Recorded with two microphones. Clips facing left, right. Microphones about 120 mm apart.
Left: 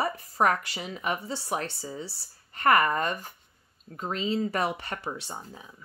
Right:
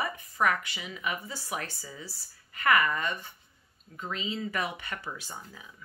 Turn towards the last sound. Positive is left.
turn(degrees=30)  # may be behind; listen again after turning